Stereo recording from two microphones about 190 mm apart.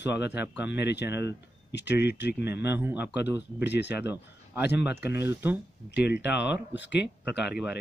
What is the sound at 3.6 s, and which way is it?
Speech, 65° left (ahead or behind).